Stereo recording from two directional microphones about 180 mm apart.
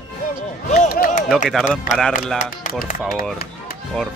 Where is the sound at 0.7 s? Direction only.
45° left (ahead or behind).